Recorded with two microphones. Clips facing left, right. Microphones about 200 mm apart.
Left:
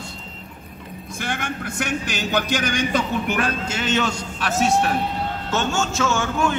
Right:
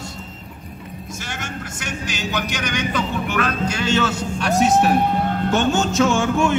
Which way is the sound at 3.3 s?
25° left (ahead or behind).